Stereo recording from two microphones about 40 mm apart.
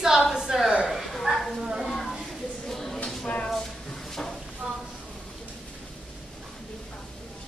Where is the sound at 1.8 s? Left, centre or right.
Centre.